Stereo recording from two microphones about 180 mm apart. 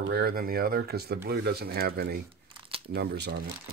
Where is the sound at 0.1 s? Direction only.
60° right (ahead or behind).